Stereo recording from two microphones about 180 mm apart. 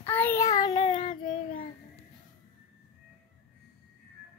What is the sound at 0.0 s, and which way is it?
Child singing, 10° left (ahead or behind).